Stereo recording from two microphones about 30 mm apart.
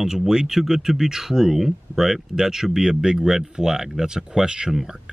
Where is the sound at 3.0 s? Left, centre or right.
Right.